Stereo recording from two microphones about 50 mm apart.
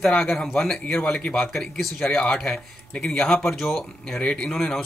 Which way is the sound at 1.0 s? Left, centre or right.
Left.